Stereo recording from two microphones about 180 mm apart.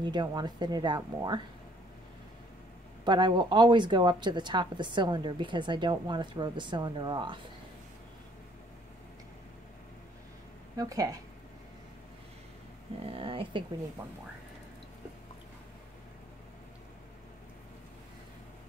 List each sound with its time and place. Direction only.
0.0 s speech: 25° right (ahead or behind)
3.1 s speech: 25° right (ahead or behind)
10.8 s speech: 20° right (ahead or behind)
13.0 s speech: 30° right (ahead or behind)